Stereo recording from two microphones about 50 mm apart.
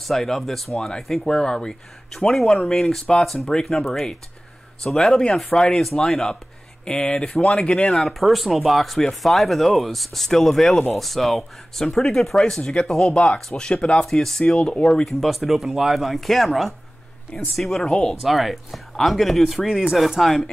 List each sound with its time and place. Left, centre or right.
0.0 s speech: centre
14.4 s speech: centre
15.0 s speech: centre